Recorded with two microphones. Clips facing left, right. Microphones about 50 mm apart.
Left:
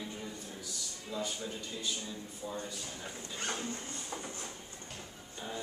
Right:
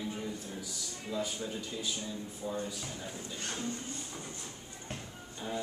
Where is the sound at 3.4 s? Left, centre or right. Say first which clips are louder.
Left 3 dB; left.